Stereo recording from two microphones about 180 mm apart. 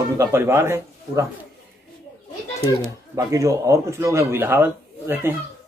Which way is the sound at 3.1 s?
20° right (ahead or behind).